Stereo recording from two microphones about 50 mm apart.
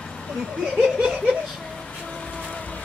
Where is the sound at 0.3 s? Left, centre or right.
Centre.